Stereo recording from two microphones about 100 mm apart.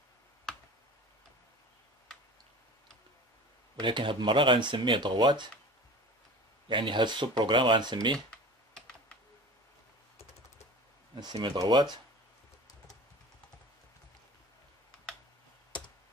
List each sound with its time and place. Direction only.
3.8 s speech: 55° right (ahead or behind)
6.7 s speech: 55° right (ahead or behind)
11.1 s speech: 45° right (ahead or behind)